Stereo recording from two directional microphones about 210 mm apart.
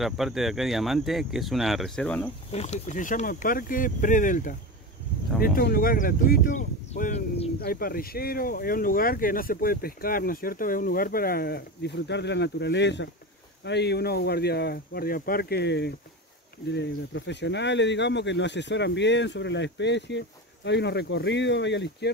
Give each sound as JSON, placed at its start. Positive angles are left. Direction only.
{"t": 0.0, "sound": "speech", "side_deg": 0}
{"t": 2.5, "sound": "speech", "side_deg": 30}
{"t": 7.6, "sound": "speech", "side_deg": 45}